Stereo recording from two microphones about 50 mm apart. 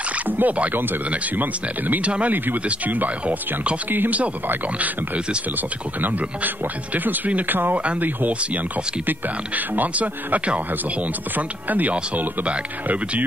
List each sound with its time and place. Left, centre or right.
0.4 s speech: right
3.9 s speech: right
4.5 s speech: right
7.7 s speech: right
9.8 s speech: right